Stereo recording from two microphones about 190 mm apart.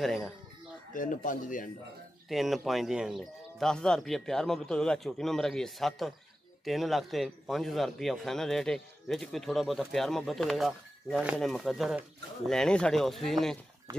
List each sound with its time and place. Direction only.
0.0 s a man's voice: centre (ahead or behind)
0.9 s speech: 45° left (ahead or behind)
2.2 s a man's voice: centre (ahead or behind)